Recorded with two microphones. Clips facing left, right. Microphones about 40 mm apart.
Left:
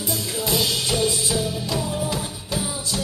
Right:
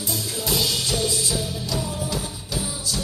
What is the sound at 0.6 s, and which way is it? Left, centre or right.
Music, centre.